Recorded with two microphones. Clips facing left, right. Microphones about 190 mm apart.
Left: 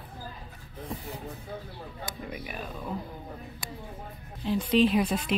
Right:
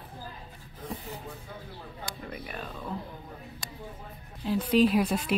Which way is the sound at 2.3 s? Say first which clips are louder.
Left 1 dB; 10° left (ahead or behind).